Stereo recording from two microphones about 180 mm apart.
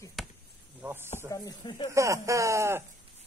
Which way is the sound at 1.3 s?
20° left (ahead or behind).